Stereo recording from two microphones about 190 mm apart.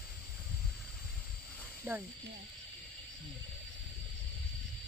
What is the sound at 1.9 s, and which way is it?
Speech, 10° right (ahead or behind).